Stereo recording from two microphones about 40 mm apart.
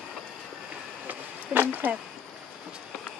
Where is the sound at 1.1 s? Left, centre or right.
Right.